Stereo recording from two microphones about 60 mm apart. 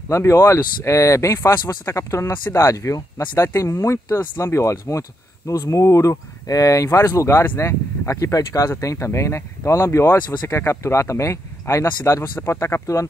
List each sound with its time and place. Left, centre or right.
0.1 s speech: left
8.8 s speech: left